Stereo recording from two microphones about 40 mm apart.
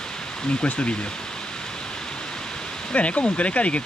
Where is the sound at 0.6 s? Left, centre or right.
Left.